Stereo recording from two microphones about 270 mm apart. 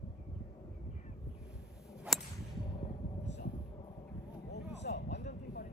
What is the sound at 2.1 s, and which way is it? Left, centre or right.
Whip, centre.